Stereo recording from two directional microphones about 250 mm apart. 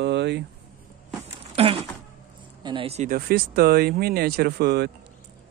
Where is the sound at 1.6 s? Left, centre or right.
Right.